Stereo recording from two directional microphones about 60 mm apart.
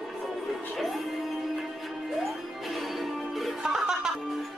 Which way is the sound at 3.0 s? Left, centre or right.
Centre.